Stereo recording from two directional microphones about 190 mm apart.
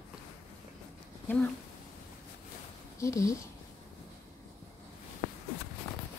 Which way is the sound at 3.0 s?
15° left (ahead or behind).